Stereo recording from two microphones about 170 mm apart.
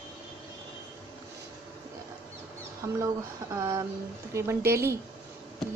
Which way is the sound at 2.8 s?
20° right (ahead or behind).